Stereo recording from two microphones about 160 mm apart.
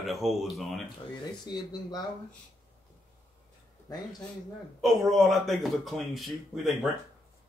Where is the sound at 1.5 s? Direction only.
25° left (ahead or behind).